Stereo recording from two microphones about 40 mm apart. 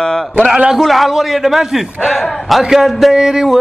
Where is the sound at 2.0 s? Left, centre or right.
Centre.